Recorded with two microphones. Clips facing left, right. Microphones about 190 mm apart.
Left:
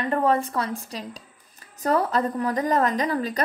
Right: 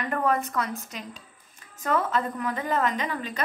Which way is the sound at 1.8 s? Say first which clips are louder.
Left 4 dB; 35° left (ahead or behind).